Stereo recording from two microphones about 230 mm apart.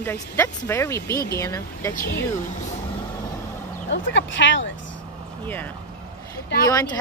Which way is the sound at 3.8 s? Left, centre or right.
Left.